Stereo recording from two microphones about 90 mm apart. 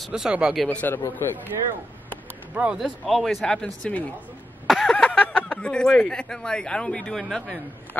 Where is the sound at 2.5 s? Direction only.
10° right (ahead or behind).